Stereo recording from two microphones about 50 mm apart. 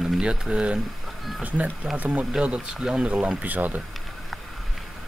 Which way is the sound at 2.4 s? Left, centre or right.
Centre.